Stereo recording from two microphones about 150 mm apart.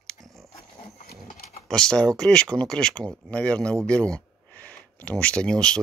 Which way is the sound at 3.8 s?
5° left (ahead or behind).